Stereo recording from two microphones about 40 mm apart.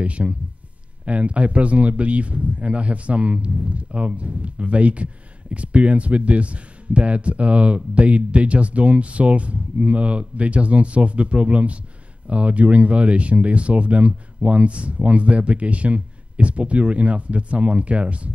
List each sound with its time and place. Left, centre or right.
0.0 s speech: right